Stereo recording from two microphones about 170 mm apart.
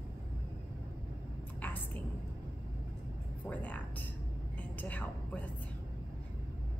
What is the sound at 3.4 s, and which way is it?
A woman's voice, 10° left (ahead or behind).